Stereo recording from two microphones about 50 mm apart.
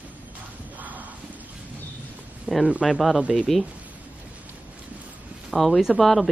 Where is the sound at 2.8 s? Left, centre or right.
Centre.